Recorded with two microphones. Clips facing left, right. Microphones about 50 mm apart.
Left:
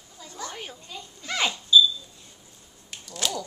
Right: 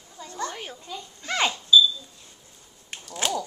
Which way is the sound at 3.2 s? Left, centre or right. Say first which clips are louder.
Right 3 dB; right.